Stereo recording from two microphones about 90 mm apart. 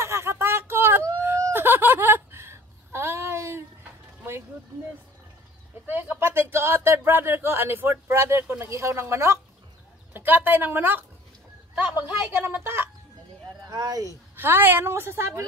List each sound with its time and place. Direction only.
0.0 s a sound: 30° right (ahead or behind)
5.9 s speech: 25° right (ahead or behind)
12.4 s speech: 20° right (ahead or behind)
13.7 s speech: 50° right (ahead or behind)
14.3 s speech: 25° right (ahead or behind)